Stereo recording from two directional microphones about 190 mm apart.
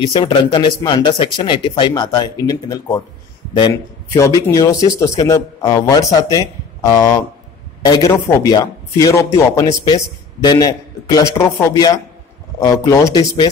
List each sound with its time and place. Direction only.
0.0 s speech: 25° left (ahead or behind)